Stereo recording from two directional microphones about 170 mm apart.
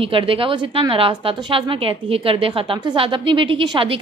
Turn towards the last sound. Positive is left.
turn(degrees=-30)  # may be behind; listen again after turning